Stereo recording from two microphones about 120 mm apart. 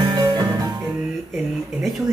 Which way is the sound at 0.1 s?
35° right (ahead or behind).